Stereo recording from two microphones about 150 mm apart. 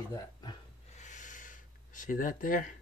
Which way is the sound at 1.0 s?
55° left (ahead or behind).